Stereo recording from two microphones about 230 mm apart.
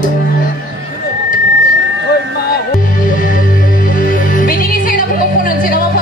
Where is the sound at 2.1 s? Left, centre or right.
Left.